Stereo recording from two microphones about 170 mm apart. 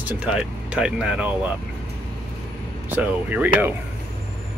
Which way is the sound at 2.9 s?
10° right (ahead or behind).